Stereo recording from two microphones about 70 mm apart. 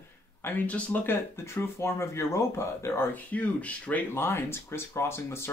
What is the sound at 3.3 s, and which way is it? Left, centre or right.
Speech, left.